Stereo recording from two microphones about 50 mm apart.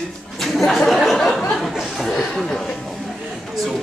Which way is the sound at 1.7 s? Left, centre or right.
Centre.